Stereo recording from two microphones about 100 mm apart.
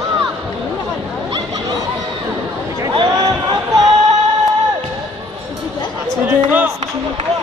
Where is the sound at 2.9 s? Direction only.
55° right (ahead or behind).